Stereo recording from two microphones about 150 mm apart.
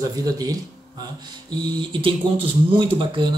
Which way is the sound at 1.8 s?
35° right (ahead or behind).